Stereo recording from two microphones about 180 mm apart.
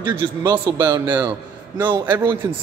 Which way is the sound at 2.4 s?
20° right (ahead or behind).